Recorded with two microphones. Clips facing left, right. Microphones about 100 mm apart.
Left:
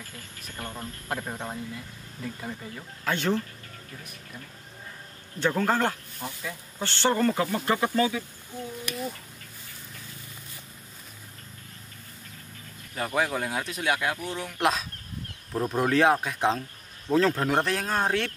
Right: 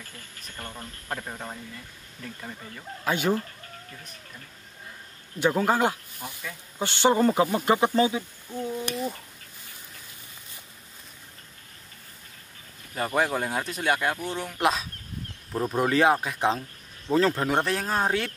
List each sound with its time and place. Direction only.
0.6 s speech: 15° left (ahead or behind)
3.1 s speech: 10° right (ahead or behind)
5.4 s speech: 10° right (ahead or behind)
12.9 s speech: centre (ahead or behind)